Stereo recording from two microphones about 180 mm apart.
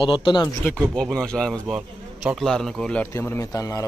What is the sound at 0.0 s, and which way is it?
Speech, 25° left (ahead or behind).